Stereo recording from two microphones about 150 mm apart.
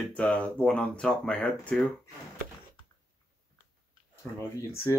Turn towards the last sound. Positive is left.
turn(degrees=15)  # may be behind; listen again after turning